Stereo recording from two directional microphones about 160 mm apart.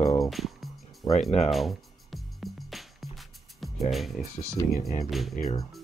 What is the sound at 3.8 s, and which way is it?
Speech, centre (ahead or behind).